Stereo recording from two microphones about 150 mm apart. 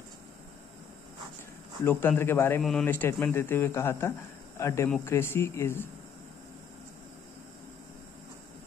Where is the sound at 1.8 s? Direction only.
15° left (ahead or behind).